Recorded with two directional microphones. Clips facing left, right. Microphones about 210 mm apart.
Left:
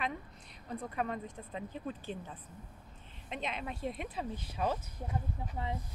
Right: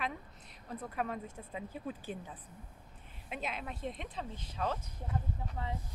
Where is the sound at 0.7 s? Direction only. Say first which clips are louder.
Left 1 dB; centre (ahead or behind).